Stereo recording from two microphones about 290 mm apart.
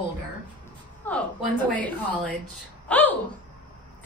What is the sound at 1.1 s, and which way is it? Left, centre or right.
A woman's voice, centre.